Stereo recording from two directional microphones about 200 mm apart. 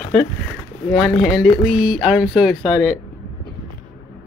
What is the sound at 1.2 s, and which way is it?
Speech, centre (ahead or behind).